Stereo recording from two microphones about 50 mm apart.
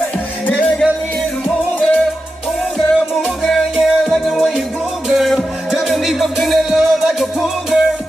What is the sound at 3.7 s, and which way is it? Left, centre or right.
Music, centre.